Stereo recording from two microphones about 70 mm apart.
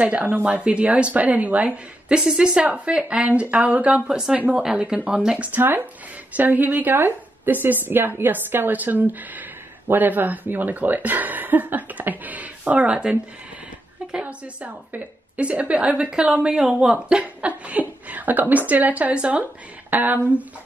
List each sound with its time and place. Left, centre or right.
0.0 s a woman's voice: right
5.6 s a woman's voice: right